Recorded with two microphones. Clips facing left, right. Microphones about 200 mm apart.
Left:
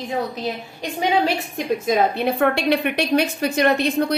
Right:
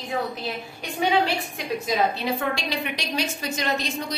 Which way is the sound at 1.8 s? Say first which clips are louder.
Left 5 dB; 55° left (ahead or behind).